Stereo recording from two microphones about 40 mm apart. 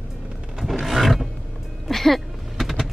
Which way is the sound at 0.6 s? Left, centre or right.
Centre.